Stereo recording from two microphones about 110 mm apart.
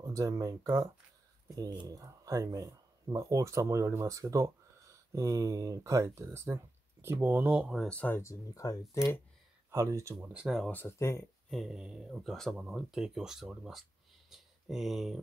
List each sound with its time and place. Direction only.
0.0 s speech: 30° right (ahead or behind); by 7.7 s 10° right (ahead or behind)
7.9 s speech: 15° left (ahead or behind)
8.2 s speech: 30° left (ahead or behind)
9.7 s speech: 30° right (ahead or behind)
10.2 s speech: 10° right (ahead or behind)
10.7 s speech: 20° left (ahead or behind)
11.5 s speech: 5° right (ahead or behind)